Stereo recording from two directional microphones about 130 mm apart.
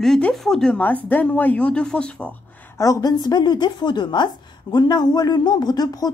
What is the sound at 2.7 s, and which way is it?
A woman's voice, 30° left (ahead or behind).